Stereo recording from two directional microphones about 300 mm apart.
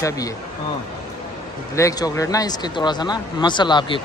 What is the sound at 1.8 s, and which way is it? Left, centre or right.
Speech, centre.